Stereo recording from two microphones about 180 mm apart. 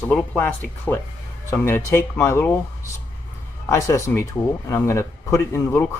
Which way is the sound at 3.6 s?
15° left (ahead or behind).